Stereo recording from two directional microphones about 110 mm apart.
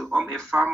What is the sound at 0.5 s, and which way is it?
Speech, 10° right (ahead or behind).